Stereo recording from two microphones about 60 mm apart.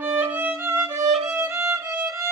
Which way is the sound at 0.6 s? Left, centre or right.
Right.